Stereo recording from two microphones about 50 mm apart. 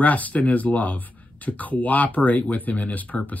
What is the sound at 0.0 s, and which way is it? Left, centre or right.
Speech, left.